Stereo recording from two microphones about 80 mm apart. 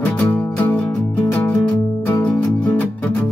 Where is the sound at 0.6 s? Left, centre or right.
Centre.